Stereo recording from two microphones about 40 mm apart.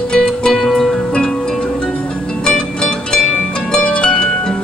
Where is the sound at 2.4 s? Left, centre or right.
Left.